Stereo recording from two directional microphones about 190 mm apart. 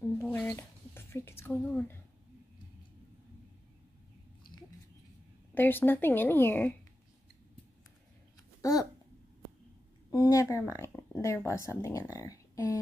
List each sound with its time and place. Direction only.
0.0 s a sound: 10° left (ahead or behind)
5.5 s speech: 10° left (ahead or behind)
8.6 s speech: 15° left (ahead or behind)
10.1 s a woman's voice: 15° left (ahead or behind)